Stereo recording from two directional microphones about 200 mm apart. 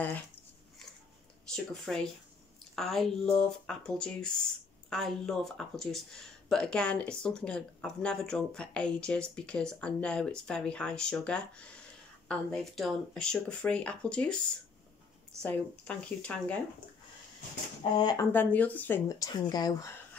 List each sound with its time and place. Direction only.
1.5 s speech: 5° left (ahead or behind)
15.4 s speech: 5° left (ahead or behind)
17.9 s speech: 20° left (ahead or behind)
18.3 s speech: 10° left (ahead or behind)